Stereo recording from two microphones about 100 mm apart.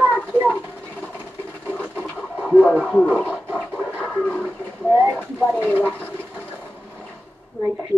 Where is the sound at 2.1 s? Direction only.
15° right (ahead or behind).